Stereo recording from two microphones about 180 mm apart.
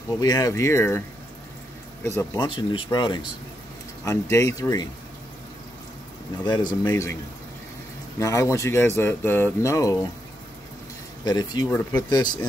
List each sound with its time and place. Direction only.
0.2 s speech: 20° left (ahead or behind)
2.0 s speech: 20° left (ahead or behind)
6.4 s speech: 25° left (ahead or behind)
8.2 s speech: 15° left (ahead or behind)
11.2 s speech: 25° left (ahead or behind)